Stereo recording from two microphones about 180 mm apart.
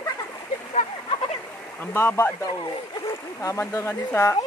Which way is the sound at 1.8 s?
10° left (ahead or behind).